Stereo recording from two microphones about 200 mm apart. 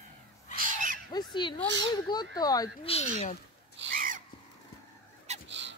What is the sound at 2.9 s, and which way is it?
Speech, 30° left (ahead or behind).